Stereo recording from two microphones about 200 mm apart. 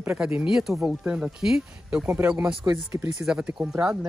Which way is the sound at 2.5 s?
20° right (ahead or behind).